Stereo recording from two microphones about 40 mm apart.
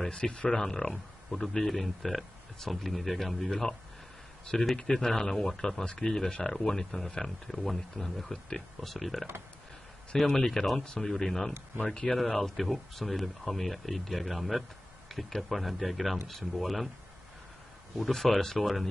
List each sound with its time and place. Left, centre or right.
0.1 s speech: left
8.8 s speech: centre
12.2 s speech: centre
17.9 s speech: centre